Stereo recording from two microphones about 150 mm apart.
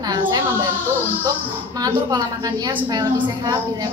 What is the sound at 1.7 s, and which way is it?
A woman's voice, 25° right (ahead or behind).